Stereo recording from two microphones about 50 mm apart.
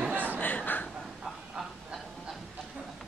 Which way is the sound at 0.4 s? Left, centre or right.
Left.